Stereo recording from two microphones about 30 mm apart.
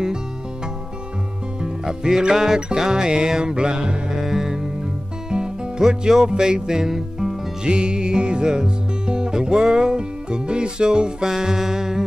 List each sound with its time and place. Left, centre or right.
1.6 s music: centre
4.2 s music: centre
5.3 s music: right
7.6 s music: right
11.2 s music: centre